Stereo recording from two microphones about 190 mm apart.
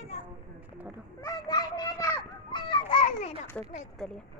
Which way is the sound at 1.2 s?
20° left (ahead or behind).